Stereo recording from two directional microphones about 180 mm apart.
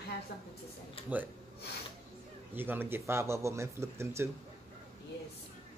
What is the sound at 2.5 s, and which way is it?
Speech, 10° right (ahead or behind).